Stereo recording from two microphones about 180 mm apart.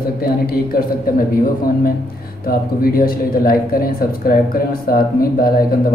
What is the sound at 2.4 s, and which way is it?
Speech, 55° left (ahead or behind).